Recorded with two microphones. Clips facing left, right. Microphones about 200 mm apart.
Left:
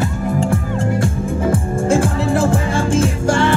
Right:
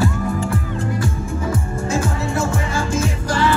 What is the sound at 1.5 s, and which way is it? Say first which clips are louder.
Music: left 6 dB; 50° left (ahead or behind).